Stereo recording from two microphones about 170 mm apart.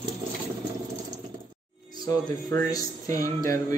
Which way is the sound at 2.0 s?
20° left (ahead or behind).